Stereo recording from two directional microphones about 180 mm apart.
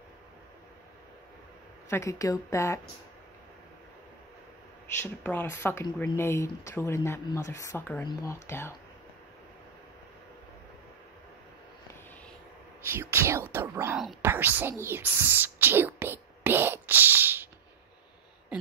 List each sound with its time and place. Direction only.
1.9 s speech: 15° left (ahead or behind)
5.0 s speech: 10° left (ahead or behind)
12.9 s speech: 15° right (ahead or behind)
14.2 s whispering: 10° right (ahead or behind)